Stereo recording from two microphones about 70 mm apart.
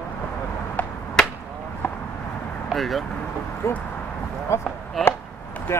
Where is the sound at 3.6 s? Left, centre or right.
Left.